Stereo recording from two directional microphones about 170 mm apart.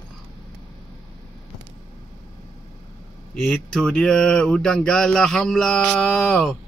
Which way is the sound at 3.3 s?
10° left (ahead or behind).